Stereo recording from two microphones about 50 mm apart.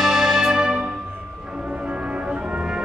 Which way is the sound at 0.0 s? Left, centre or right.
Centre.